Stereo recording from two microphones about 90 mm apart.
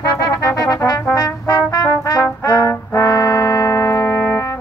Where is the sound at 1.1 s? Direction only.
40° left (ahead or behind).